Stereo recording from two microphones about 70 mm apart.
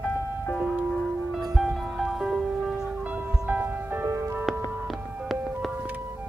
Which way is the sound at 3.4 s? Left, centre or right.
Right.